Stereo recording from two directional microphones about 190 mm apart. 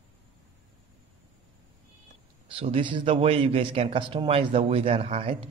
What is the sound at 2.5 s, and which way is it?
A man's voice, 30° right (ahead or behind).